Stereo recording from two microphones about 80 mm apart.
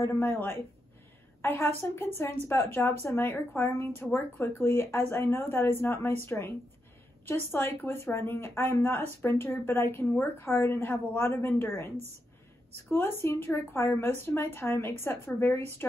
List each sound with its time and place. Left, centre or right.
0.0 s speech: left
12.9 s speech: left